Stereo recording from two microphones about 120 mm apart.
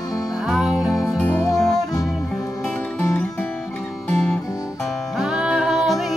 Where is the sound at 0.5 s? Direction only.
5° right (ahead or behind).